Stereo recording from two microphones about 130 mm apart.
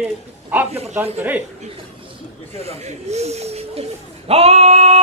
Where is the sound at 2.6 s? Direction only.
55° right (ahead or behind).